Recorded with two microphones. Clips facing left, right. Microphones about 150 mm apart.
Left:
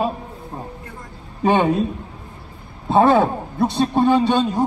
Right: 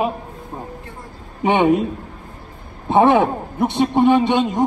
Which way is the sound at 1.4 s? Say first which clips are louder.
Right 1 dB; 20° right (ahead or behind).